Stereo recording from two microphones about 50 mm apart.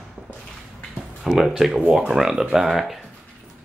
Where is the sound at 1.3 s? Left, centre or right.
Centre.